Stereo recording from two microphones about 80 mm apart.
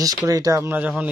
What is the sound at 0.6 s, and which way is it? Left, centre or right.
Speech, right.